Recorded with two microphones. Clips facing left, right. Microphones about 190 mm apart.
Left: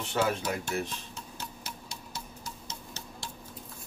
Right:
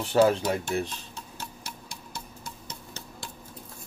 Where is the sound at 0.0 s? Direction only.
35° right (ahead or behind).